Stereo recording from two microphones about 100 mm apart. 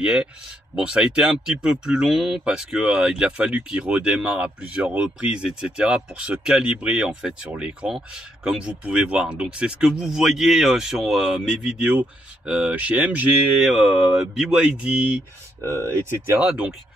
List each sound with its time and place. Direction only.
0.0 s speech: 10° right (ahead or behind)
15.6 s speech: 25° right (ahead or behind)
16.3 s speech: 10° right (ahead or behind)